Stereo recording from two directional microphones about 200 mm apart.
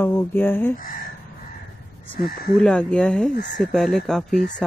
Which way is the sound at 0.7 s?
45° left (ahead or behind).